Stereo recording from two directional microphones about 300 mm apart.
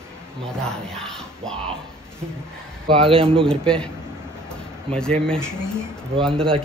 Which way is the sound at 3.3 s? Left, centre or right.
Centre.